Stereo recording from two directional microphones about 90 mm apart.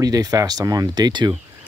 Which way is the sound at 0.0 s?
40° right (ahead or behind).